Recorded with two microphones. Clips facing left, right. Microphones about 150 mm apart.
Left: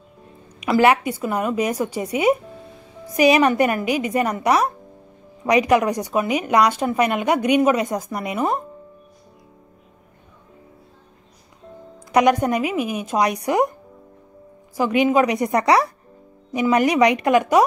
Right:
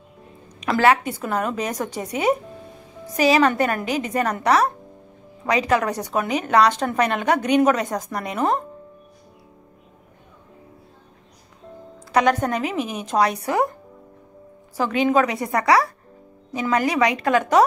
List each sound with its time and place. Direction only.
0.6 s speech: 10° left (ahead or behind)
12.1 s speech: 15° left (ahead or behind)
14.8 s a woman's voice: 15° left (ahead or behind)